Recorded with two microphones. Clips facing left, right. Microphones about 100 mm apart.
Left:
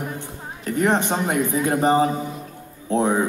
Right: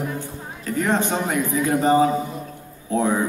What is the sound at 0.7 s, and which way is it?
Speech, 20° left (ahead or behind).